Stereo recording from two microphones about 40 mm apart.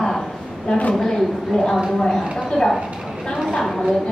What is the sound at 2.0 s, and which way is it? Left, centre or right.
Speech, centre.